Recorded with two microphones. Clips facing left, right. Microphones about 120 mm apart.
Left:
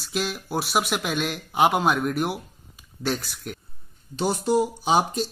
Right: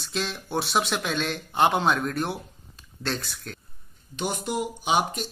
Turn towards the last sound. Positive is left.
turn(degrees=35)  # may be behind; listen again after turning